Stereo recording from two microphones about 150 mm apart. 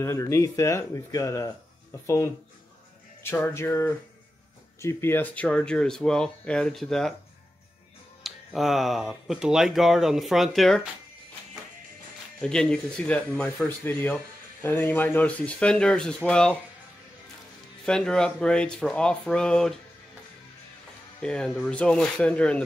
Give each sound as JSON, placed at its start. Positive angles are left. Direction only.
{"t": 0.0, "sound": "speech", "side_deg": 20}
{"t": 8.2, "sound": "speech", "side_deg": 0}
{"t": 12.4, "sound": "speech", "side_deg": 5}
{"t": 17.8, "sound": "speech", "side_deg": 5}
{"t": 21.2, "sound": "speech", "side_deg": 5}